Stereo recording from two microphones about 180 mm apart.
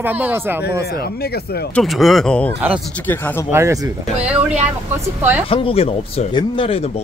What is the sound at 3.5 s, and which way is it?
Speech, 15° right (ahead or behind).